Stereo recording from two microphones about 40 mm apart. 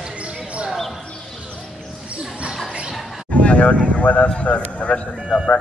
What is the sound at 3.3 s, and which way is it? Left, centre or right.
Speech, left.